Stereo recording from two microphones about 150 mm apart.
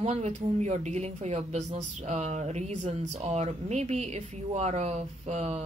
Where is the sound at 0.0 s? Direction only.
50° right (ahead or behind).